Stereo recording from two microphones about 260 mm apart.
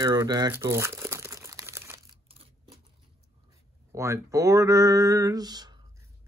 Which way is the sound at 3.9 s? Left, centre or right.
Centre.